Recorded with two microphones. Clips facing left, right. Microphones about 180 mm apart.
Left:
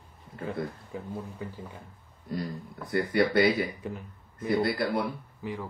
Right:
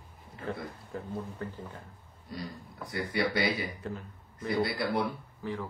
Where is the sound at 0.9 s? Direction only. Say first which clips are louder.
Right 2 dB; 10° left (ahead or behind).